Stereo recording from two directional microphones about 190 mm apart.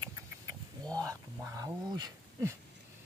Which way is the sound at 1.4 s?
15° right (ahead or behind).